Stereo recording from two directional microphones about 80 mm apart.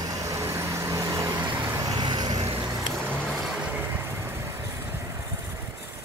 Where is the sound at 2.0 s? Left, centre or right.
Right.